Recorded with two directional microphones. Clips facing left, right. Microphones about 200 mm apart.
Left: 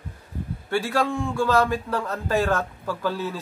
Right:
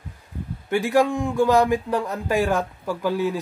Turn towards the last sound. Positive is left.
turn(degrees=-15)  # may be behind; listen again after turning